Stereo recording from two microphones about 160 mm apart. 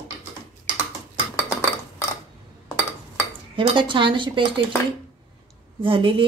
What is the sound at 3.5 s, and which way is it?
Speech, 30° right (ahead or behind).